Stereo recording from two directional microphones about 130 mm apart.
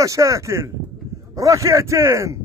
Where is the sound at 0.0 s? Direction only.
25° right (ahead or behind).